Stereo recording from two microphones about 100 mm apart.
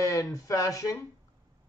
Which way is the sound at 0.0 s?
35° left (ahead or behind).